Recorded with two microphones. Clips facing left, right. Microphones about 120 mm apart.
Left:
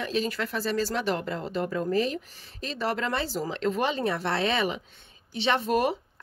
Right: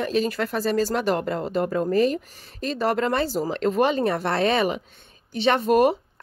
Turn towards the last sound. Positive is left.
turn(degrees=-45)  # may be behind; listen again after turning